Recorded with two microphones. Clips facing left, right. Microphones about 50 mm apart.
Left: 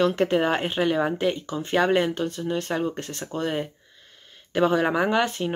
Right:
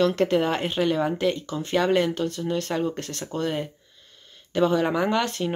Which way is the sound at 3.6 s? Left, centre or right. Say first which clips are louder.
Right 1 dB; left.